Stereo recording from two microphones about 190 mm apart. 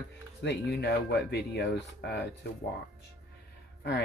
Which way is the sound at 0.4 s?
65° left (ahead or behind).